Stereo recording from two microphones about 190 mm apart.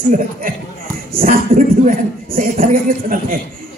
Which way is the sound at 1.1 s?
45° right (ahead or behind).